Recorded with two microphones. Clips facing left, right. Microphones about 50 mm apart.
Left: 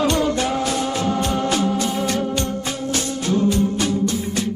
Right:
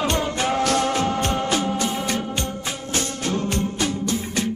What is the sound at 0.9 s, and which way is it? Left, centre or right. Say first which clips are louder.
Music: left 1 dB; right.